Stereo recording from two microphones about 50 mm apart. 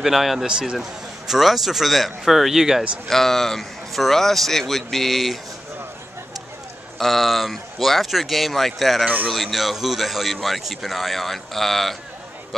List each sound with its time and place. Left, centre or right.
0.0 s speech: centre
0.5 s speech: centre
0.7 s speech: centre
3.1 s speech: centre
7.0 s speech: centre
9.0 s a man's voice: right
9.3 s speech: centre